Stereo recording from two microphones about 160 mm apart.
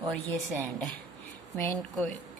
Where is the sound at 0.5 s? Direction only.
10° left (ahead or behind).